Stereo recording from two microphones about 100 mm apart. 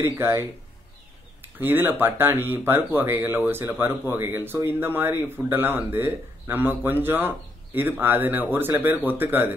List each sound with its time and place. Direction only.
0.0 s speech: 25° right (ahead or behind)